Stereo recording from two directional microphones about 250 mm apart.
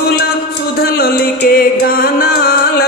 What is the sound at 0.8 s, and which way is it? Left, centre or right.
Music, left.